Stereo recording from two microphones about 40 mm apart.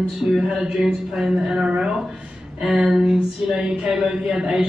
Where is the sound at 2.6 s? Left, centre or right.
Centre.